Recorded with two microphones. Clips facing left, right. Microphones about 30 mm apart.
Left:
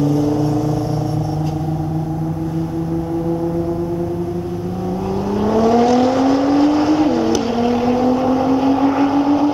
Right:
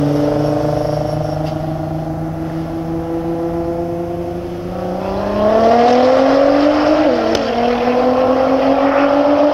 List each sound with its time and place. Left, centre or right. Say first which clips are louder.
0.0 s vehicle: right 2 dB; right
5.3 s vehicle: right 4 dB; right